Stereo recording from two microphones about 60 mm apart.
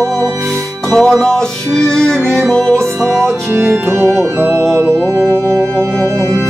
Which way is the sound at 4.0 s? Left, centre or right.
Right.